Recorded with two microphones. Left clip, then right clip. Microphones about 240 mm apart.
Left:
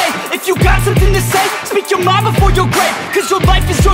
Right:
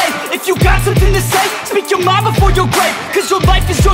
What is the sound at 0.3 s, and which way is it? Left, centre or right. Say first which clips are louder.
Music: even; centre.